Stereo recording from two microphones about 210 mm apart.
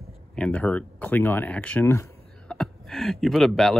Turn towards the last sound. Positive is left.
turn(degrees=0)  # may be behind; listen again after turning